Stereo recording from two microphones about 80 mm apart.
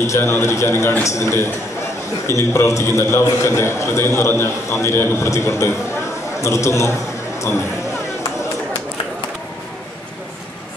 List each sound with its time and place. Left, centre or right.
0.0 s a man's voice: left